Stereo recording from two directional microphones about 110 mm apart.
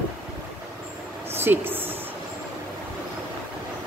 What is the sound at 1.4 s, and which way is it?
Speech, 20° right (ahead or behind).